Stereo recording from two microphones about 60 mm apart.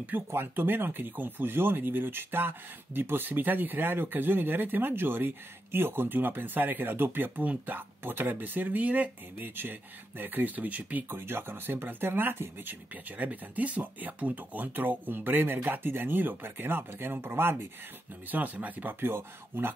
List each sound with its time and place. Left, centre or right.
0.0 s speech: right